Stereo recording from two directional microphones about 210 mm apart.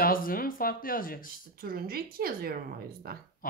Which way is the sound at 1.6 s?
45° right (ahead or behind).